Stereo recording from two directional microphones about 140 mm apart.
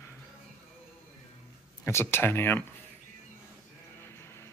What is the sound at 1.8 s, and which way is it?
Speech, 15° left (ahead or behind).